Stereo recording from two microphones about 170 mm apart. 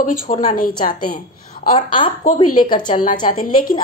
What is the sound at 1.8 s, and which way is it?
Speech, 30° left (ahead or behind).